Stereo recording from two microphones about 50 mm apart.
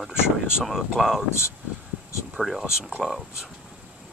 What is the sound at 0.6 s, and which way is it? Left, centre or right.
Speech, centre.